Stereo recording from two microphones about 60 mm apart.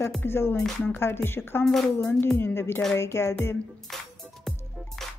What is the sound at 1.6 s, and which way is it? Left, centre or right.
Speech, centre.